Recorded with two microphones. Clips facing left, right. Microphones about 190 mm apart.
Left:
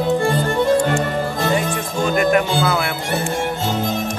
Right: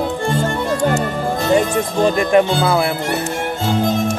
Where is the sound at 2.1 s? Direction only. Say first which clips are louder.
Left 1 dB; 30° right (ahead or behind).